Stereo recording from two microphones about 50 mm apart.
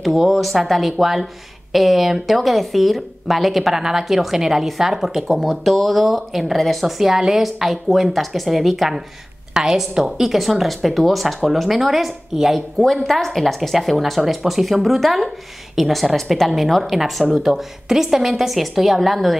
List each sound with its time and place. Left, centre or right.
0.0 s speech: centre